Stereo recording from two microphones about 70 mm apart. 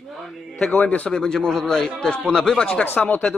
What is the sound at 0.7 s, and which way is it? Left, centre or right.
A man's voice, centre.